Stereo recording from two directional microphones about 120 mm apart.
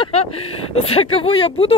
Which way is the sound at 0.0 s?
60° left (ahead or behind).